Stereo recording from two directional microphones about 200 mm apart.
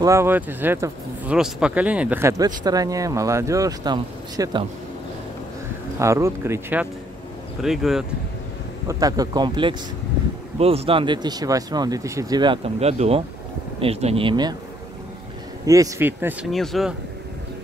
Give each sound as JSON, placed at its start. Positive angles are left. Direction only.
{"t": 0.0, "sound": "speech", "side_deg": -15}
{"t": 5.9, "sound": "speech", "side_deg": -15}
{"t": 8.8, "sound": "speech", "side_deg": -20}
{"t": 15.6, "sound": "speech", "side_deg": -15}